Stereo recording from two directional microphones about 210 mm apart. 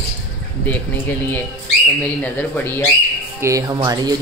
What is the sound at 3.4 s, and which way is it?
Speech, 15° right (ahead or behind).